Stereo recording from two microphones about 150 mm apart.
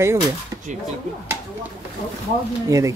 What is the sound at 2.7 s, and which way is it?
Speech, 20° right (ahead or behind).